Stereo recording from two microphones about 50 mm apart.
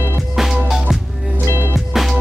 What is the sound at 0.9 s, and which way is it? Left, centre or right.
Music, centre.